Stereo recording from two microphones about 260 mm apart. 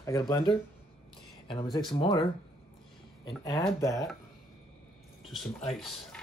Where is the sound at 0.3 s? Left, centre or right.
Centre.